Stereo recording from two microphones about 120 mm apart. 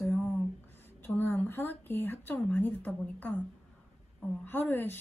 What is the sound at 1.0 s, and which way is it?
Speech, 20° left (ahead or behind).